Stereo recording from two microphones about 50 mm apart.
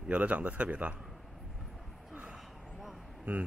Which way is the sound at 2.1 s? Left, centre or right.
Right.